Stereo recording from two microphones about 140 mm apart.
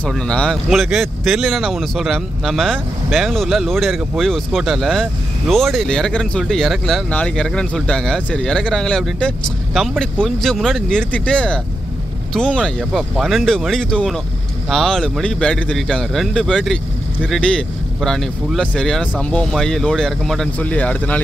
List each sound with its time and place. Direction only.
0.0 s speech: 5° left (ahead or behind)